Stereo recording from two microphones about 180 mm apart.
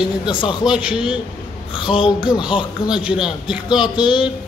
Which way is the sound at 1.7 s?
30° left (ahead or behind).